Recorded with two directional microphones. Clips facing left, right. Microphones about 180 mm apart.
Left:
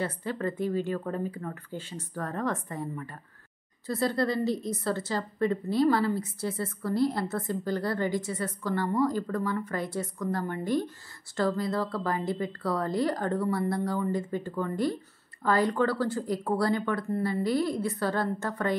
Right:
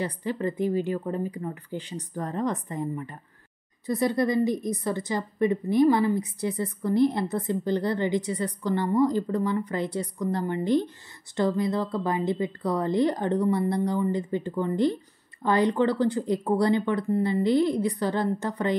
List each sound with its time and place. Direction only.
0.0 s a woman's voice: 15° right (ahead or behind)